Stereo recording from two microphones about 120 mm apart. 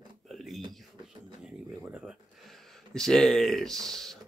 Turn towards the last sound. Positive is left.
turn(degrees=5)  # may be behind; listen again after turning